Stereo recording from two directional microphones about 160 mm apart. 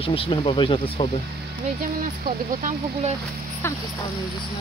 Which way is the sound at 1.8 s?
60° right (ahead or behind).